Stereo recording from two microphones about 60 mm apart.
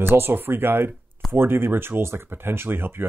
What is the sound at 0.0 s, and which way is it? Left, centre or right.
Speech, right.